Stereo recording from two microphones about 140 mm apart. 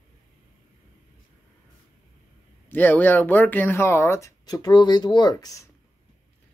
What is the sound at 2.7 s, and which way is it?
Speech, 15° left (ahead or behind).